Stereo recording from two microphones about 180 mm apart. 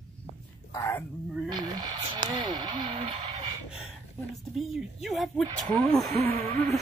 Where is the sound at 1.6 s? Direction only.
25° right (ahead or behind).